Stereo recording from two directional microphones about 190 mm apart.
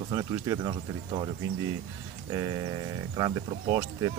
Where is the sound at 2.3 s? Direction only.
20° right (ahead or behind).